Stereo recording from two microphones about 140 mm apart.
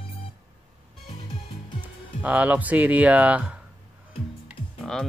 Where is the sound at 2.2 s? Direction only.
10° right (ahead or behind).